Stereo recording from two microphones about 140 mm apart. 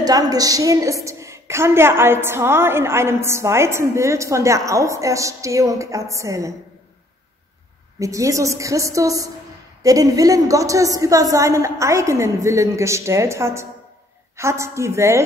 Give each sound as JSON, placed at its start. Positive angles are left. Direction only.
{"t": 0.0, "sound": "a woman's voice", "side_deg": -25}
{"t": 8.0, "sound": "a woman's voice", "side_deg": -25}